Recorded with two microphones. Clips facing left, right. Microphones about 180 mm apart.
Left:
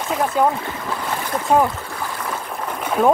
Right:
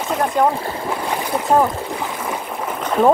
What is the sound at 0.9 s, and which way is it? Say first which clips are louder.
Boat: right 2 dB; 15° right (ahead or behind).